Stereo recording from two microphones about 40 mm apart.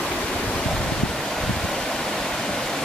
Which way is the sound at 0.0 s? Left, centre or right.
Left.